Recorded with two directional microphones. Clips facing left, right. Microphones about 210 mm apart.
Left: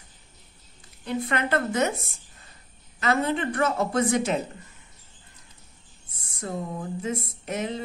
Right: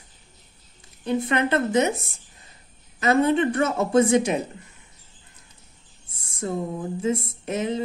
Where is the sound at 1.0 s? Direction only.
25° right (ahead or behind).